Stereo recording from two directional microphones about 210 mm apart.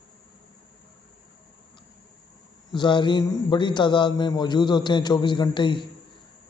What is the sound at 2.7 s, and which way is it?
A man's voice, 20° left (ahead or behind).